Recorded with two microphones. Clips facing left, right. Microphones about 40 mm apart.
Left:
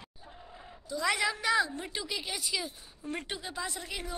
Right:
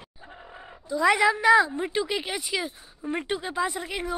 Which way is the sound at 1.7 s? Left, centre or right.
Right.